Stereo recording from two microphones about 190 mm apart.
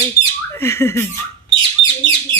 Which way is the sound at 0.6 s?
10° left (ahead or behind).